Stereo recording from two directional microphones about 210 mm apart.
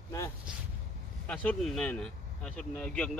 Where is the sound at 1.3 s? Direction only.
5° left (ahead or behind).